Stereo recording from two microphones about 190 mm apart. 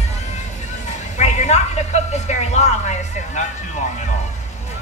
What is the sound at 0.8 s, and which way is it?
A woman's voice, 40° left (ahead or behind).